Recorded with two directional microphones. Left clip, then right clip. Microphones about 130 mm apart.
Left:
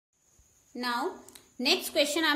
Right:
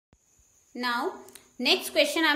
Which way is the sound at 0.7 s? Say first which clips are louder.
Right 3 dB; 30° left (ahead or behind).